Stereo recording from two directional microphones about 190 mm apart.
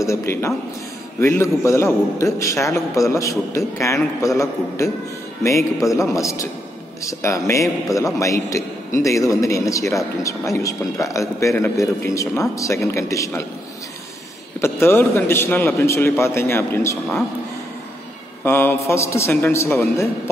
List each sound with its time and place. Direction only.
0.0 s a man's voice: 15° left (ahead or behind)
14.6 s a man's voice: 10° left (ahead or behind)
18.4 s a man's voice: 10° left (ahead or behind)